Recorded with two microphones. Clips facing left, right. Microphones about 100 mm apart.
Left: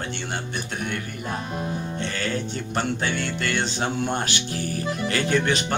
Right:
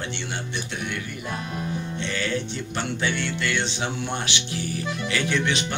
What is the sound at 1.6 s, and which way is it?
Music, 45° left (ahead or behind).